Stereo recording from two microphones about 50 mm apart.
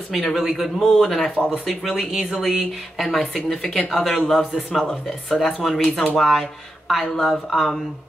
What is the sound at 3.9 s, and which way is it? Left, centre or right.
Speech, centre.